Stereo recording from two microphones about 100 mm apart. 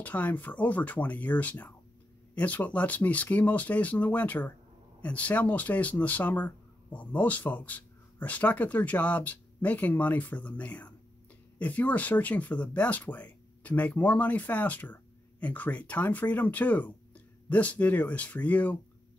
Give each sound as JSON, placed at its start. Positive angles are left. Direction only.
{"t": 0.0, "sound": "speech", "side_deg": 15}